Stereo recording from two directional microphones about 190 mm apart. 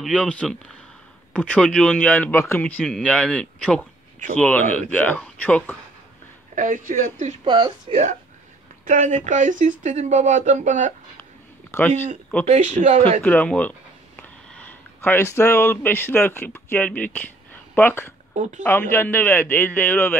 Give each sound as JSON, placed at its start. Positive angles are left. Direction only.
{"t": 0.0, "sound": "speech", "side_deg": 5}
{"t": 6.5, "sound": "speech", "side_deg": -45}
{"t": 7.4, "sound": "speech", "side_deg": -25}
{"t": 8.8, "sound": "speech", "side_deg": -40}
{"t": 11.7, "sound": "speech", "side_deg": 15}
{"t": 12.4, "sound": "speech", "side_deg": -40}
{"t": 13.2, "sound": "speech", "side_deg": 10}
{"t": 18.3, "sound": "speech", "side_deg": -40}
{"t": 18.6, "sound": "speech", "side_deg": 10}